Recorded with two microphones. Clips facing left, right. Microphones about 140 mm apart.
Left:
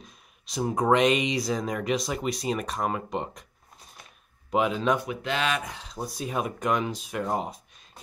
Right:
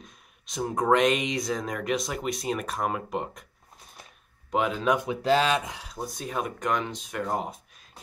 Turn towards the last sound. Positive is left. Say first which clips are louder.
# left 1 dB
turn(degrees=0)  # may be behind; listen again after turning